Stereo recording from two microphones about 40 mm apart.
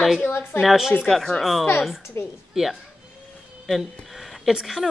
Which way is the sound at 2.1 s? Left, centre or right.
Left.